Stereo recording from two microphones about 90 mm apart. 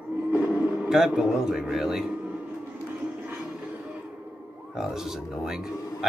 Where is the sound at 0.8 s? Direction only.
5° right (ahead or behind).